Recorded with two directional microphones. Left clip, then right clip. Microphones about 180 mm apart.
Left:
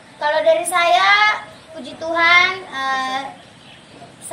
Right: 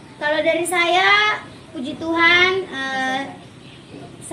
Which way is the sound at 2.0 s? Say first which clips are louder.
Left 2 dB; 25° left (ahead or behind).